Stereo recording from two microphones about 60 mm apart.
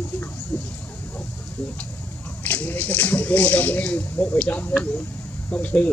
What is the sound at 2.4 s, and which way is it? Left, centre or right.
Speech, left.